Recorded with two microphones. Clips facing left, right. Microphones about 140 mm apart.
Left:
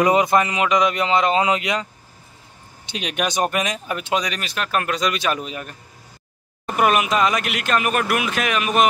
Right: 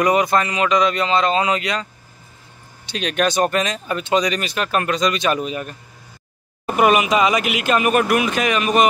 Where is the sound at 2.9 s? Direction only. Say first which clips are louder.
Right 4 dB; 15° left (ahead or behind).